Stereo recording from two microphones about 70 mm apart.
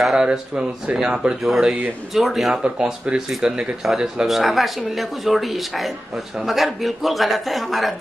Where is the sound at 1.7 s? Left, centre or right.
Right.